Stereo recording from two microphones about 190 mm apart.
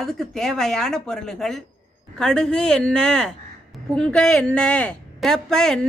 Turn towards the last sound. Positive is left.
turn(degrees=5)  # may be behind; listen again after turning